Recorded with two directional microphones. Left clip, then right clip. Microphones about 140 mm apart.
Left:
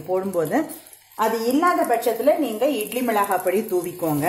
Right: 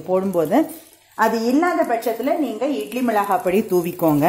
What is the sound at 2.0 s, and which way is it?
A woman's voice, 15° right (ahead or behind).